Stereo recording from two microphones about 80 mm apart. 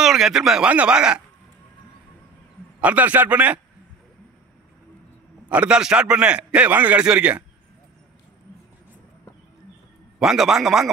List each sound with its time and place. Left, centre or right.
0.0 s a man's voice: centre
2.8 s a man's voice: centre
5.5 s a man's voice: centre
10.1 s a man's voice: centre